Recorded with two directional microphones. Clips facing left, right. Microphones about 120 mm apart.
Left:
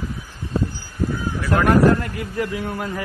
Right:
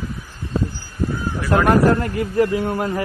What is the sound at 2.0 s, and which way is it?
A man's voice, 35° right (ahead or behind).